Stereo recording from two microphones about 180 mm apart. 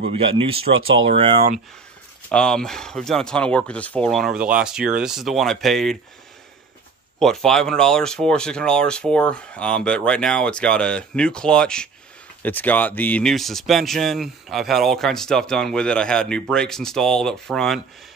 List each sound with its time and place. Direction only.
0.2 s speech: 30° right (ahead or behind)
2.2 s speech: 5° left (ahead or behind)
7.2 s speech: 5° left (ahead or behind)